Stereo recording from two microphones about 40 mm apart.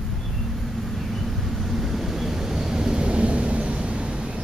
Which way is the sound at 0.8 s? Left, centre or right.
Centre.